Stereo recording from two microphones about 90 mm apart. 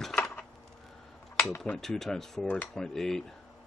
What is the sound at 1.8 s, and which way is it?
Speech, 5° left (ahead or behind).